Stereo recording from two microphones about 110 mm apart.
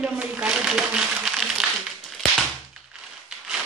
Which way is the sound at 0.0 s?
5° right (ahead or behind).